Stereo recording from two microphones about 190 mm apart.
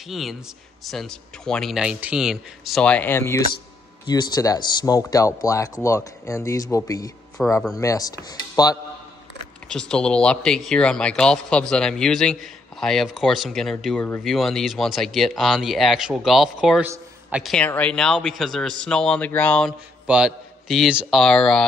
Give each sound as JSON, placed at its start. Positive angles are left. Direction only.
{"t": 0.1, "sound": "speech", "side_deg": 0}
{"t": 7.4, "sound": "speech", "side_deg": 5}
{"t": 7.7, "sound": "speech", "side_deg": 20}
{"t": 9.7, "sound": "speech", "side_deg": 5}
{"t": 20.1, "sound": "speech", "side_deg": -5}